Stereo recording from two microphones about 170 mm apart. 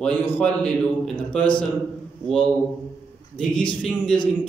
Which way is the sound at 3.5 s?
30° left (ahead or behind).